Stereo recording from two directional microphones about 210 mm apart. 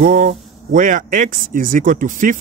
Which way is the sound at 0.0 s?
40° right (ahead or behind).